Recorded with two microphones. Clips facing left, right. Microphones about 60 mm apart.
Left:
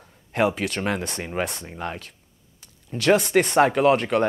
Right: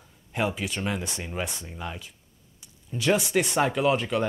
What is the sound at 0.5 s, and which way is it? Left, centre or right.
Speech, left.